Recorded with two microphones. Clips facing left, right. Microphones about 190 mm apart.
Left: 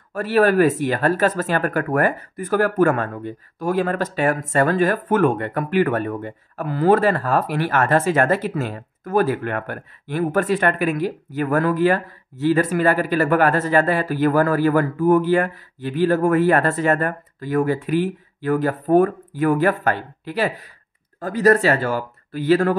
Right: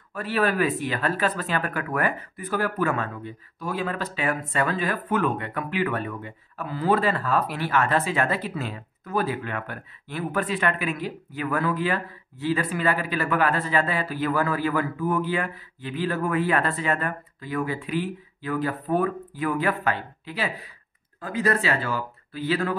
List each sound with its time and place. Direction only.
0.1 s speech: 45° left (ahead or behind)